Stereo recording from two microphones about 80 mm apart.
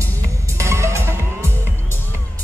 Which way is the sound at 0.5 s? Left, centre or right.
Right.